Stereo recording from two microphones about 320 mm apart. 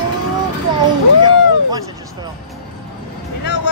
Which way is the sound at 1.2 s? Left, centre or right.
Centre.